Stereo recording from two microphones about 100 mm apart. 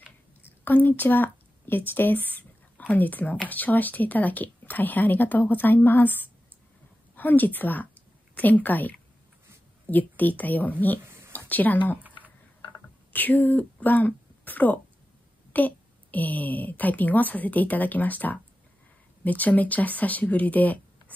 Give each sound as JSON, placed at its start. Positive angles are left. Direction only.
{"t": 0.4, "sound": "a woman's voice", "side_deg": 20}
{"t": 13.1, "sound": "a woman's voice", "side_deg": 15}